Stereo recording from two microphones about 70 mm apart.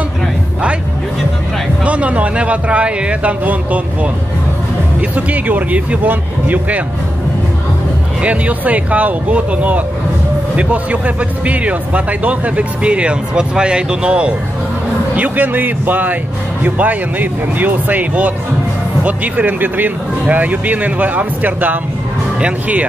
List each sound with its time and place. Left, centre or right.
1.9 s speech: centre
5.1 s speech: right
8.2 s speech: centre